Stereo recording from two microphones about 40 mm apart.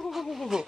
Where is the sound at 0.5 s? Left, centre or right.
Centre.